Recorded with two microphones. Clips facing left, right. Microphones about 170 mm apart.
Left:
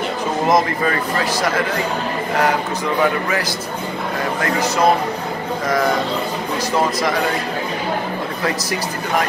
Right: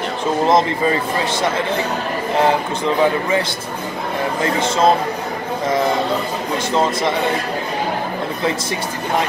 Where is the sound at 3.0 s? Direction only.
25° right (ahead or behind).